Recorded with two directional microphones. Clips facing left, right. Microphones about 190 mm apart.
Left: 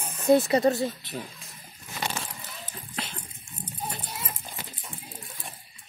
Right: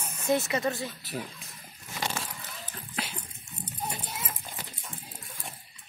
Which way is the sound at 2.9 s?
10° right (ahead or behind).